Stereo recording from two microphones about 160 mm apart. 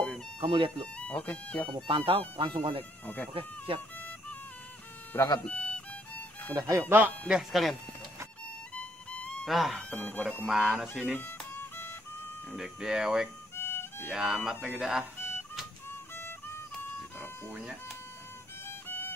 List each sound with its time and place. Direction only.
0.4 s speech: 30° right (ahead or behind)
0.9 s speech: 10° left (ahead or behind)
1.9 s speech: 35° right (ahead or behind)
5.1 s speech: 20° left (ahead or behind)
5.4 s speech: 10° left (ahead or behind)
6.5 s speech: 15° right (ahead or behind)
8.7 s speech: 5° left (ahead or behind)
11.1 s music: 15° left (ahead or behind)
12.4 s speech: 5° right (ahead or behind)
13.6 s music: 15° left (ahead or behind)
14.0 s speech: 5° right (ahead or behind)
15.1 s music: 15° left (ahead or behind)
18.7 s music: 15° left (ahead or behind)